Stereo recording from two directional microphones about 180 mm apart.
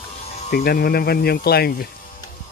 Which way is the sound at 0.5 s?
55° left (ahead or behind).